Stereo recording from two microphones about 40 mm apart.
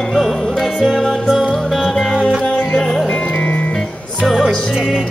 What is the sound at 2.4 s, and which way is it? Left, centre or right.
Music, centre.